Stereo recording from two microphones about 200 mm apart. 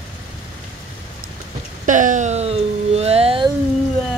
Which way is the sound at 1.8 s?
40° right (ahead or behind).